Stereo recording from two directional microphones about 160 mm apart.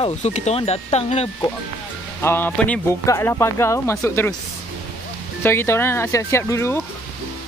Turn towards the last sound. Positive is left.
turn(degrees=15)  # may be behind; listen again after turning